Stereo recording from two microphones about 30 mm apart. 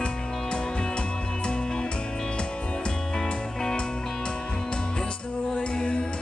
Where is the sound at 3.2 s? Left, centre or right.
Centre.